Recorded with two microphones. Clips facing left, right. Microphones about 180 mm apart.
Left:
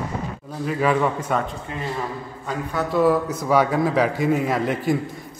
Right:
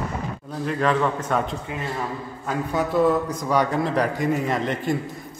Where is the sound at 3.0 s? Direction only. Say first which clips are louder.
Left 2 dB; 5° left (ahead or behind).